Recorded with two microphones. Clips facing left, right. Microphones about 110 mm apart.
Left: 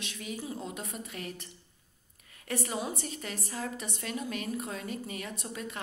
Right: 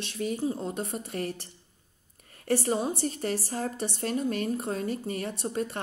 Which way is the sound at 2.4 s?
35° right (ahead or behind).